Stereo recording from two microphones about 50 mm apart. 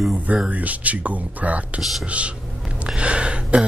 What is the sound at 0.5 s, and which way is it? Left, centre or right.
Speech, right.